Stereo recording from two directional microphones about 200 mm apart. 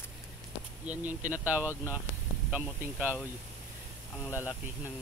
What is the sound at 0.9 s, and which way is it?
Speech, 10° right (ahead or behind).